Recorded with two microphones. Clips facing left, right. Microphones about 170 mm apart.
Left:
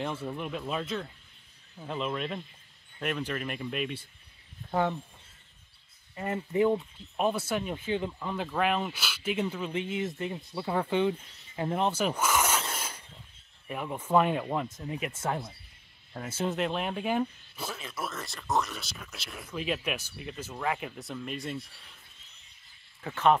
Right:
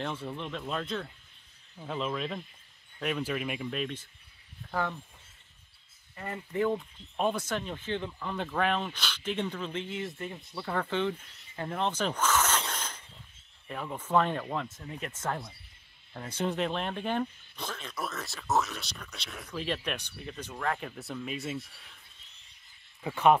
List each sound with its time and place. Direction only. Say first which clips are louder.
0.0 s speech: left 2 dB; 5° left (ahead or behind)
3.8 s speech: left 1 dB; 10° left (ahead or behind)
4.6 s speech: left 5 dB; 20° left (ahead or behind)
6.1 s speech: left 5 dB; 20° left (ahead or behind); by 21.6 s centre (ahead or behind)
23.0 s speech: right 1 dB; 10° right (ahead or behind)